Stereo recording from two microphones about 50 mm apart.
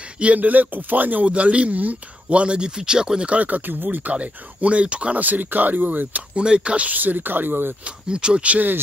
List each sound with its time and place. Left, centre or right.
0.2 s speech: right
1.2 s speech: right
3.3 s speech: right
5.2 s speech: right
6.3 s speech: centre
6.9 s speech: right
7.8 s speech: centre